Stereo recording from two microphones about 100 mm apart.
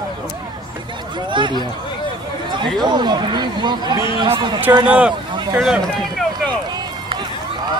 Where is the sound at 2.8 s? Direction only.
45° right (ahead or behind).